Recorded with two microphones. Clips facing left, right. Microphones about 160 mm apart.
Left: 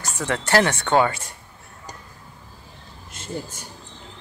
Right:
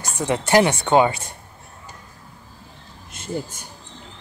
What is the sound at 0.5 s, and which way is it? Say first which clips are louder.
Speech: right 3 dB; 15° right (ahead or behind).